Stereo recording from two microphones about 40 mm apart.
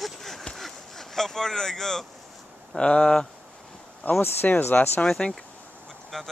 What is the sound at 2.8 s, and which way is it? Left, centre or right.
Speech, left.